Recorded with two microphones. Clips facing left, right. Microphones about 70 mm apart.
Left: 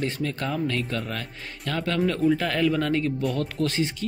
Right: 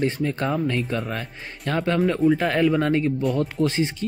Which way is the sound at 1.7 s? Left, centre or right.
Right.